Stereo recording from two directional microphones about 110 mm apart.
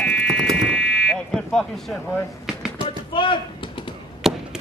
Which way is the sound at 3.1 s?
50° left (ahead or behind).